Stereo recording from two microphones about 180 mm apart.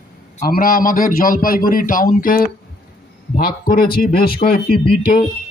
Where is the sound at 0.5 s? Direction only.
50° left (ahead or behind).